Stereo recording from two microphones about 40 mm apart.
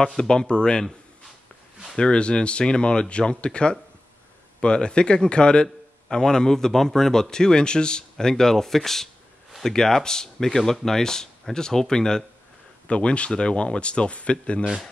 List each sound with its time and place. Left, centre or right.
0.2 s speech: left
2.0 s a man's voice: left
12.8 s speech: left